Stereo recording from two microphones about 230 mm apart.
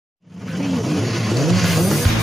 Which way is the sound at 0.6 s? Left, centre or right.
Centre.